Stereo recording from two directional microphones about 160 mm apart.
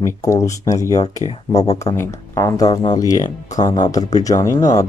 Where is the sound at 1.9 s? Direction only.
20° left (ahead or behind).